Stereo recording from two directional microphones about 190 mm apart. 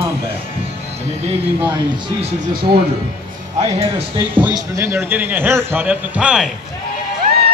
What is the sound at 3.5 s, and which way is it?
Speech, 35° right (ahead or behind).